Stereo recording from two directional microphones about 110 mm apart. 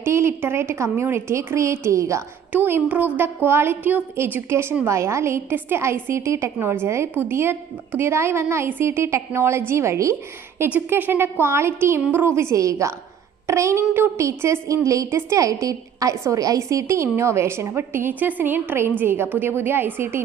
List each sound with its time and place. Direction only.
0.0 s a woman's voice: 25° right (ahead or behind)
2.5 s a woman's voice: 15° right (ahead or behind)